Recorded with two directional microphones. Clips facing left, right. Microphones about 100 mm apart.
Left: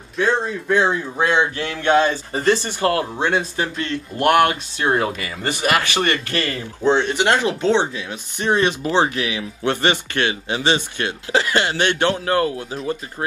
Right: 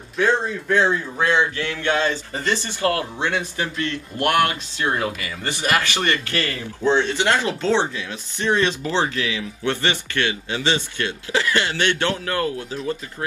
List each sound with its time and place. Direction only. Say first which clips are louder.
0.7 s speech: left 1 dB; 15° left (ahead or behind)
5.5 s speech: left 2 dB; 20° left (ahead or behind)